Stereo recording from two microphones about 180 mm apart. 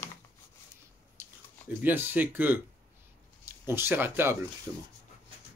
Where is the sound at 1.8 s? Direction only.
10° right (ahead or behind).